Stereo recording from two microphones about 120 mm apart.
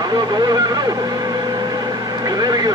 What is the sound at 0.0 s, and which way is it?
Vehicle, 35° right (ahead or behind).